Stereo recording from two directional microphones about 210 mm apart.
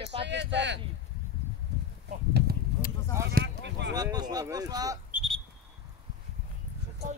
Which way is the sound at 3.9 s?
20° right (ahead or behind).